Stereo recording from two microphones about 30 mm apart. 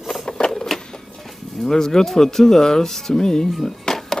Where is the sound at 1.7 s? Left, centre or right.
Centre.